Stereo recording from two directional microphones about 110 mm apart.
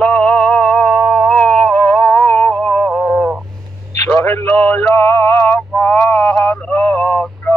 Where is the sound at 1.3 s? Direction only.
10° left (ahead or behind).